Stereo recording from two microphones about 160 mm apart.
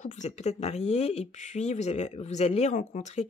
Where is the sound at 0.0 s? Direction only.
45° left (ahead or behind).